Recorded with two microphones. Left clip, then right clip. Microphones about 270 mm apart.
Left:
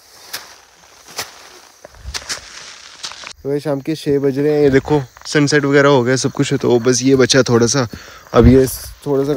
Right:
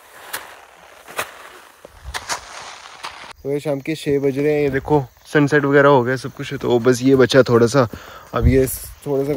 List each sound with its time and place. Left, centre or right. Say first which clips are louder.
2.2 s a sound: even; centre
3.4 s speech: left 3 dB; centre
8.3 s speech: left 7 dB; centre